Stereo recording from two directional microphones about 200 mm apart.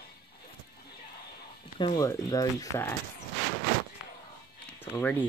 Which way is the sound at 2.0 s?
15° left (ahead or behind).